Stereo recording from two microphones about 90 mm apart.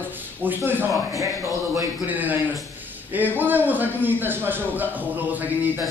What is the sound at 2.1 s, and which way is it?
A man's voice, 20° right (ahead or behind).